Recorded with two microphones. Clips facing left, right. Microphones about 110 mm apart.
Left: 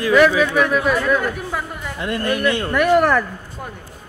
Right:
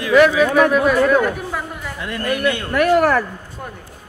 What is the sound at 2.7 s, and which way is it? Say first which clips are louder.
Speech: right 1 dB; centre (ahead or behind).